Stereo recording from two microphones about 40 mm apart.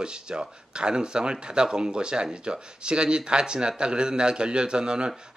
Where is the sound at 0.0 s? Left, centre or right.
Right.